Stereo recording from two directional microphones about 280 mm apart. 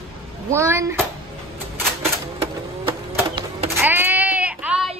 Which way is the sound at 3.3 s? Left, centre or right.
Centre.